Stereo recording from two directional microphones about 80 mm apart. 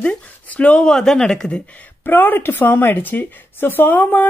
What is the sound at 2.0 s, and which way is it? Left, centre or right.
A woman's voice, left.